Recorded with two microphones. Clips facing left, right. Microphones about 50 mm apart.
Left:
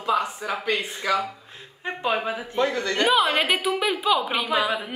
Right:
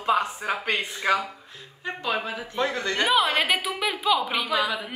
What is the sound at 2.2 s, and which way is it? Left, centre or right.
Speech, left.